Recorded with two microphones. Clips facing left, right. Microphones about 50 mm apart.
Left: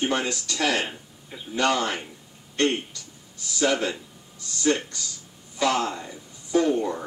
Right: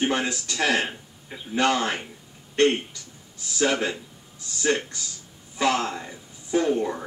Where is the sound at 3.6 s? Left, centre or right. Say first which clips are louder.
Even; right.